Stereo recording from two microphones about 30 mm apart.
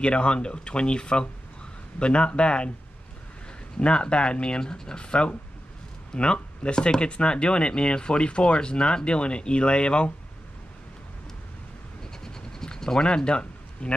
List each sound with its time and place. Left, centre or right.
0.0 s speech: left
3.8 s speech: left
12.0 s scratch: left